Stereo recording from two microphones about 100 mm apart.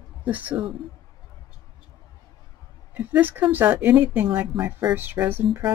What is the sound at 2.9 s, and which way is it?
Speech, 15° right (ahead or behind).